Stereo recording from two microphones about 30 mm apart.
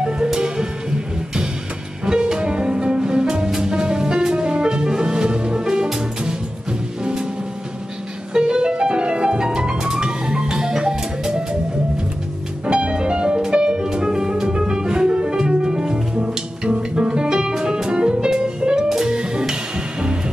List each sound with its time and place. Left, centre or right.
0.0 s music: right
2.0 s music: right
8.3 s music: right
12.6 s music: right
18.9 s music: right